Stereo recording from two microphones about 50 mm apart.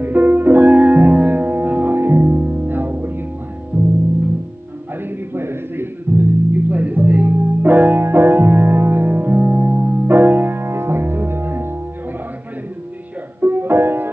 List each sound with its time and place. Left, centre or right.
0.0 s music: right
2.0 s music: right
3.7 s music: right
5.0 s music: right
6.5 s music: right
8.0 s music: right
9.4 s music: right
13.4 s music: right